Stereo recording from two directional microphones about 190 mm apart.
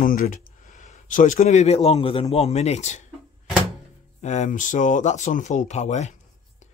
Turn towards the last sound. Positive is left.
turn(degrees=35)  # may be behind; listen again after turning